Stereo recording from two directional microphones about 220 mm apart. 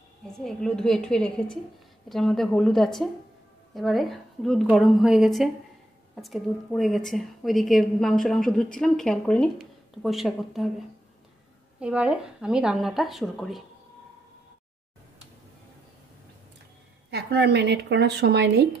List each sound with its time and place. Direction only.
0.3 s a woman's voice: centre (ahead or behind)
11.8 s a woman's voice: 5° right (ahead or behind)
17.1 s speech: 50° right (ahead or behind)